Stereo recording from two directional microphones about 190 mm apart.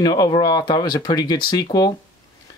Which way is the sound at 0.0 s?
20° left (ahead or behind).